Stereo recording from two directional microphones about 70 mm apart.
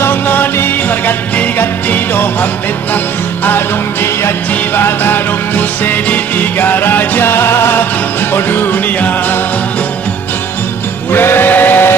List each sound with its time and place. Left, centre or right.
0.0 s music: left
3.4 s music: left
11.1 s steam whistle: left